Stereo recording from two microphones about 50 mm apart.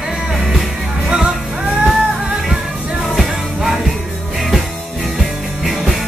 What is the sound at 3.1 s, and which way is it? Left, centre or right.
Music, centre.